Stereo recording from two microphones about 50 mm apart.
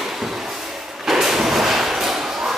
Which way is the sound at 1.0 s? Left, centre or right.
Centre.